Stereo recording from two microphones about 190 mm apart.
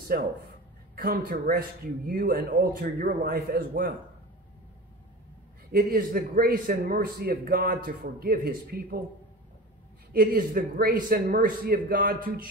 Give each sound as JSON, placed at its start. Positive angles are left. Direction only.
{"t": 0.1, "sound": "a man's voice", "side_deg": -55}
{"t": 5.7, "sound": "a man's voice", "side_deg": -50}
{"t": 10.1, "sound": "a man's voice", "side_deg": -50}